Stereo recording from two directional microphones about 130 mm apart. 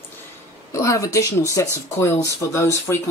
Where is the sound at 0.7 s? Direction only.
25° left (ahead or behind).